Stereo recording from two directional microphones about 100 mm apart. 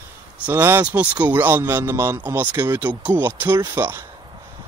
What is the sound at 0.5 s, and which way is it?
A man's voice, 20° right (ahead or behind).